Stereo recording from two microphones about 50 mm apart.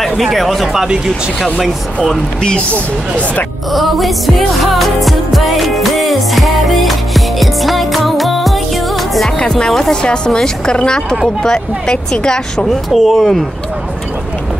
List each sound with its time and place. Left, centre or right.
0.2 s speech: centre
0.7 s speech: centre
3.7 s music: centre
9.5 s speech: centre
12.9 s speech: centre